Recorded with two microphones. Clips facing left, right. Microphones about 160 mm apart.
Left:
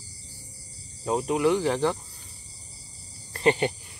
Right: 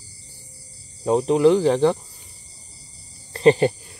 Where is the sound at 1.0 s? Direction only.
30° right (ahead or behind).